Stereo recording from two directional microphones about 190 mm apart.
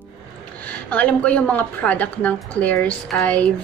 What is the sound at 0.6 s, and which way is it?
A woman's voice, 10° left (ahead or behind).